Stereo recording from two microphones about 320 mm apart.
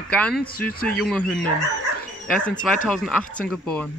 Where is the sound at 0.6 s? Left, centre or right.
Left.